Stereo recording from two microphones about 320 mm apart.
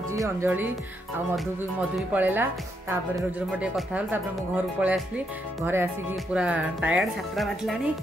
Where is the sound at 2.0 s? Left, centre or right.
Centre.